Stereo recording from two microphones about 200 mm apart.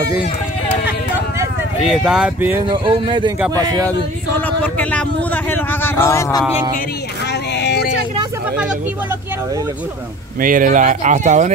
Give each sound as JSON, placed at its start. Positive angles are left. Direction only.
{"t": 1.9, "sound": "speech", "side_deg": -5}
{"t": 2.7, "sound": "speech", "side_deg": -25}
{"t": 4.5, "sound": "speech", "side_deg": 10}
{"t": 7.5, "sound": "vehicle", "side_deg": 55}
{"t": 10.4, "sound": "speech", "side_deg": -45}